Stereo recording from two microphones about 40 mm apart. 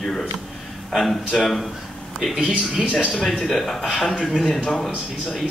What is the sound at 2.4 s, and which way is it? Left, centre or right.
Speech, centre.